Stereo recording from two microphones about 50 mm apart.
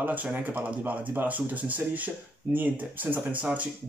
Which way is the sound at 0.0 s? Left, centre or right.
Right.